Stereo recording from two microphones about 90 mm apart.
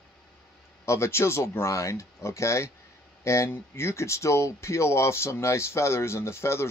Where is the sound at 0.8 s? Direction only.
30° left (ahead or behind).